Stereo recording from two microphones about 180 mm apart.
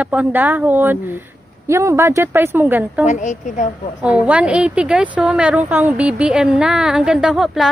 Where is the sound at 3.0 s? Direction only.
40° left (ahead or behind).